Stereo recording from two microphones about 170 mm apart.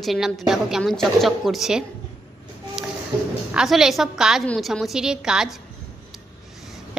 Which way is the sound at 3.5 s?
5° right (ahead or behind).